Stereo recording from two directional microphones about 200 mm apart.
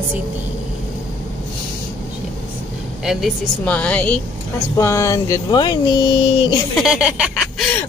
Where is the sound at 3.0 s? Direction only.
Centre (ahead or behind); by 6.5 s 20° left (ahead or behind).